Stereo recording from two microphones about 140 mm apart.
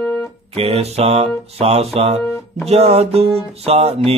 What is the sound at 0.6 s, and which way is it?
Speech, 45° right (ahead or behind).